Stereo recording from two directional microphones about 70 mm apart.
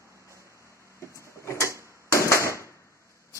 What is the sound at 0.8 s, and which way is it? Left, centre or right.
Vehicle, left.